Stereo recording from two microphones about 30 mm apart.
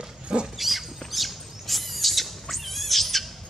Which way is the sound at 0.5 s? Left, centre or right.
Centre.